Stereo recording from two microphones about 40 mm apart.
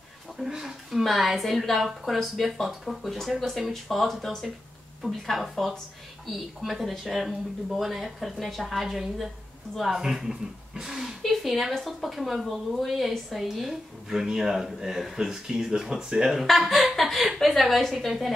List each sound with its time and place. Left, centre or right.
0.4 s speech: centre
10.7 s a sound: centre
11.2 s speech: centre
16.3 s speech: centre